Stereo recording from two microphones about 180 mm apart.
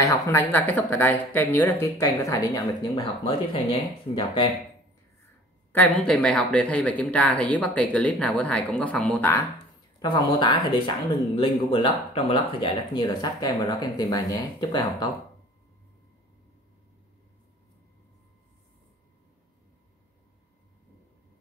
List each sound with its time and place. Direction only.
0.0 s speech: 15° left (ahead or behind)
5.7 s speech: 10° left (ahead or behind)
9.9 s speech: 25° left (ahead or behind)